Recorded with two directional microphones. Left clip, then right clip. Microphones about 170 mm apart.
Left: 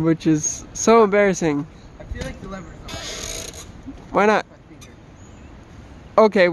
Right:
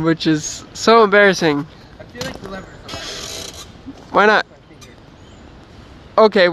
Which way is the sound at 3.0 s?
25° left (ahead or behind).